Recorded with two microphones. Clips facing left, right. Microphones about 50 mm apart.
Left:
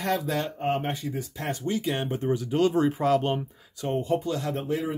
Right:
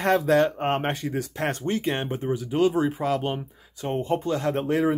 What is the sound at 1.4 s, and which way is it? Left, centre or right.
Speech, right.